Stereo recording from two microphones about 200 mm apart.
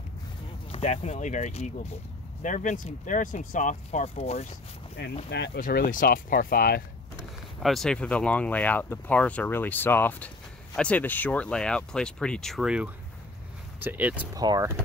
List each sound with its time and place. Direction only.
0.7 s speech: 30° left (ahead or behind)
5.3 s speech: 55° left (ahead or behind)
7.6 s speech: centre (ahead or behind)
14.4 s speech: 20° right (ahead or behind)